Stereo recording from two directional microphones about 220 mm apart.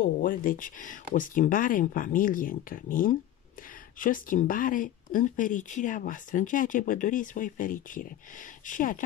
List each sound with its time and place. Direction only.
0.0 s speech: 40° left (ahead or behind)